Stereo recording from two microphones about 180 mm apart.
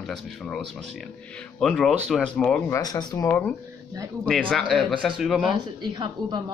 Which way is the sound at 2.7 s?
20° left (ahead or behind).